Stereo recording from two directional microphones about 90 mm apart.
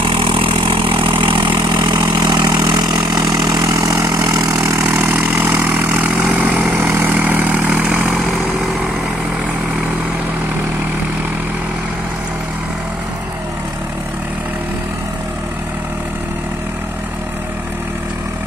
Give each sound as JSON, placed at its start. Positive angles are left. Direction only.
{"t": 0.0, "sound": "vehicle", "side_deg": -70}
{"t": 4.7, "sound": "vehicle", "side_deg": -20}
{"t": 8.1, "sound": "vehicle", "side_deg": 0}